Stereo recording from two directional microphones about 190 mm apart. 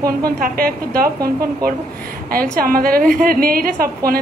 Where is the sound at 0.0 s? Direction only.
50° right (ahead or behind).